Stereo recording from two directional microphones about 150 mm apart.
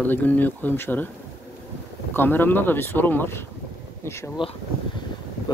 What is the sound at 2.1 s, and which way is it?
Speech, 15° left (ahead or behind).